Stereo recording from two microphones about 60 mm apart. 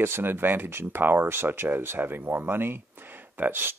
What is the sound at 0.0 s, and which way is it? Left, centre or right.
Speech, right.